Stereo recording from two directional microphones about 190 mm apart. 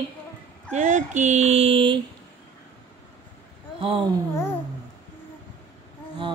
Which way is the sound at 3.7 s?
30° right (ahead or behind).